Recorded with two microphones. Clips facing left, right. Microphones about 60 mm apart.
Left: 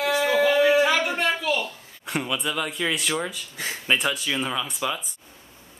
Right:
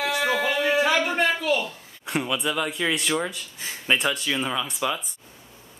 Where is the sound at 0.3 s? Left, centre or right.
Centre.